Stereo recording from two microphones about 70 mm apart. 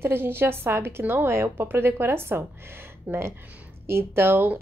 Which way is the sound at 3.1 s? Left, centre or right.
Right.